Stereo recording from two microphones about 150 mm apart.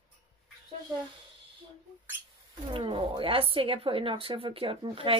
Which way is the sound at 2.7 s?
35° right (ahead or behind).